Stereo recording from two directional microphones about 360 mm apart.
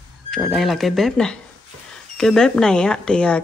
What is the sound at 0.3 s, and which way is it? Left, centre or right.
Speech, centre.